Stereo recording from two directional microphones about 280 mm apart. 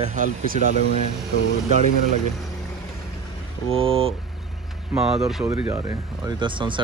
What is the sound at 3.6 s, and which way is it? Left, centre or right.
Speech, centre.